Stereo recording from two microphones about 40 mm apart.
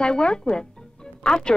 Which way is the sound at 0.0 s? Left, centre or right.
Left.